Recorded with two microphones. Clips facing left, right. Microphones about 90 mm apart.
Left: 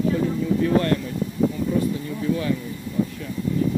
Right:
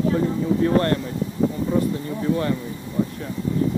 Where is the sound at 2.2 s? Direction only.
45° right (ahead or behind).